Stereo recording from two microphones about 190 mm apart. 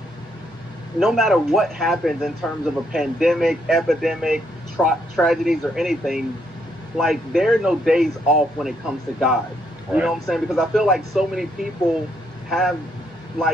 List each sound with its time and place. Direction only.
0.9 s speech: centre (ahead or behind)
12.4 s speech: centre (ahead or behind)